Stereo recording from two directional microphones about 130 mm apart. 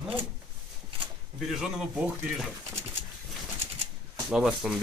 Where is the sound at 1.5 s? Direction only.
Centre (ahead or behind).